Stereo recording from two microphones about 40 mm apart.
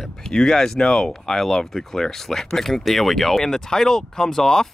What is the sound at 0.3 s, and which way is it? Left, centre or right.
Speech, centre.